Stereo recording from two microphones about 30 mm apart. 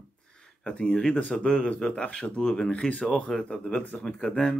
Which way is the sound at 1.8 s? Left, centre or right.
Left.